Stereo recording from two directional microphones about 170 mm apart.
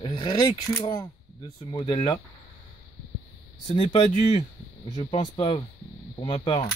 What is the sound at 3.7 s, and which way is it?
Speech, 35° left (ahead or behind).